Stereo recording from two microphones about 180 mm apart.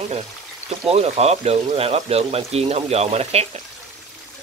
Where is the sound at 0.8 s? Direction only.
35° right (ahead or behind).